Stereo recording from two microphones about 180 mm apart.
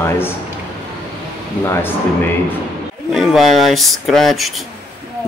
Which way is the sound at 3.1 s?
Centre (ahead or behind).